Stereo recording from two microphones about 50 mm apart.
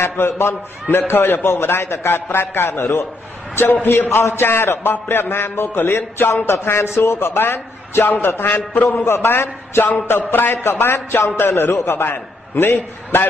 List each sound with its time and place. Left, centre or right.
0.0 s a man's voice: left
0.8 s a man's voice: left
12.0 s a man's voice: left